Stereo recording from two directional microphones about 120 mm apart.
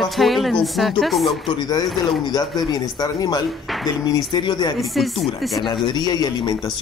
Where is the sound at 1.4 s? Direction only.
35° left (ahead or behind).